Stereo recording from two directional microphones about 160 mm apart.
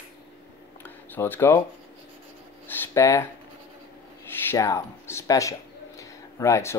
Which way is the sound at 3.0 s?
20° left (ahead or behind).